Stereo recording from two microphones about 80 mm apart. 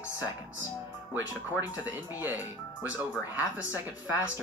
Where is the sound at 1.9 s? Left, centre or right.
Right.